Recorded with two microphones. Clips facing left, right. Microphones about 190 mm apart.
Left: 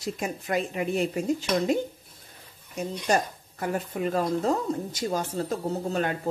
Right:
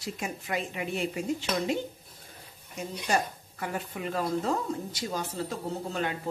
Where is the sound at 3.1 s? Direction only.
45° left (ahead or behind).